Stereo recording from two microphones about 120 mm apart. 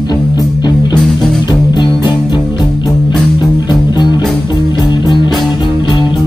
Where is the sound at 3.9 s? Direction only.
35° left (ahead or behind).